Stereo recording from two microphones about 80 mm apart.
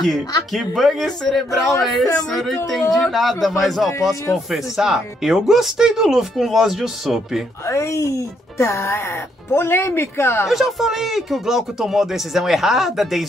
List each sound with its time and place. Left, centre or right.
0.7 s speech: centre
7.6 s speech: left
10.5 s speech: centre